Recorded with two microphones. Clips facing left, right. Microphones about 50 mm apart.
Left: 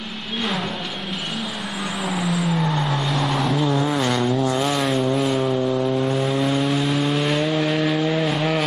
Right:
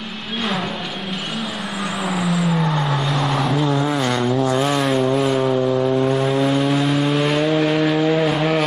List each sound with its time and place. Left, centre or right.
2.0 s vehicle: centre